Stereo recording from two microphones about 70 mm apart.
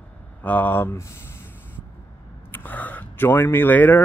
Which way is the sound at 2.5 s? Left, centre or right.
Left.